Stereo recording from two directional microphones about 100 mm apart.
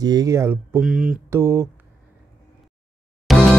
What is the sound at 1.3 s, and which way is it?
Speech, 25° right (ahead or behind).